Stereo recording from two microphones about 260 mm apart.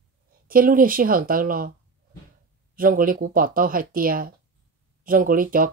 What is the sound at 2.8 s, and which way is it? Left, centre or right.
A woman's voice, right.